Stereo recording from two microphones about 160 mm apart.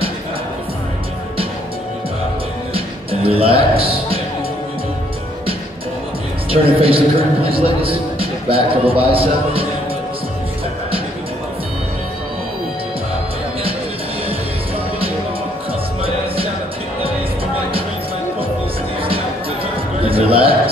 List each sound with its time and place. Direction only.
2.7 s music: 35° right (ahead or behind)
6.5 s a woman's voice: 35° right (ahead or behind)
20.1 s a sound: 35° right (ahead or behind)